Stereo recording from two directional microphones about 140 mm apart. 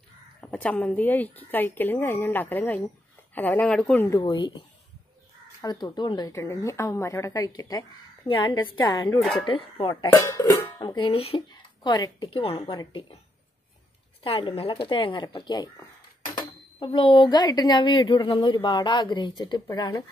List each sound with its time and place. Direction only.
0.4 s speech: 10° left (ahead or behind)
4.2 s speech: 35° left (ahead or behind)
5.6 s a woman's voice: 25° left (ahead or behind)
10.1 s speech: 20° left (ahead or behind)
11.0 s speech: 40° left (ahead or behind)
11.8 s speech: 30° left (ahead or behind)
14.2 s speech: 40° left (ahead or behind); by 20.1 s 25° left (ahead or behind)